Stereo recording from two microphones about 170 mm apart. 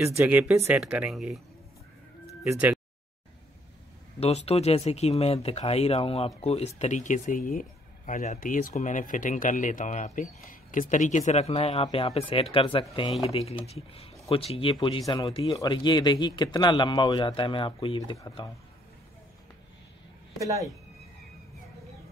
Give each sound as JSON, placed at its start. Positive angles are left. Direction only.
{"t": 0.0, "sound": "speech", "side_deg": -15}
{"t": 2.4, "sound": "speech", "side_deg": -10}
{"t": 4.2, "sound": "speech", "side_deg": 35}
{"t": 15.2, "sound": "a man's voice", "side_deg": 30}
{"t": 20.3, "sound": "speech", "side_deg": -20}